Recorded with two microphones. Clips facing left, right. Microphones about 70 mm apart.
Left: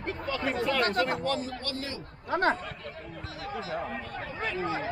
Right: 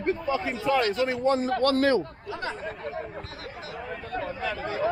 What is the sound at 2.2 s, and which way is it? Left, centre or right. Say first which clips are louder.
Speech: left 7 dB; left.